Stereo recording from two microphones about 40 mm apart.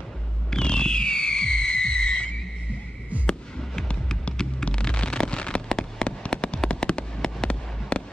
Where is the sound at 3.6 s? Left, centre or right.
Centre.